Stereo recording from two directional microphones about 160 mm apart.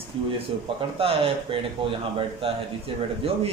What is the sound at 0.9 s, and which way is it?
A man's voice, 35° right (ahead or behind).